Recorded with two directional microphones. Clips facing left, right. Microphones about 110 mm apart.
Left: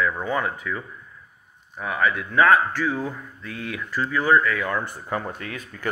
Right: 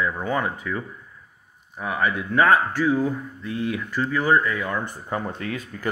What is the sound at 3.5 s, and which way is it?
Speech, 70° left (ahead or behind).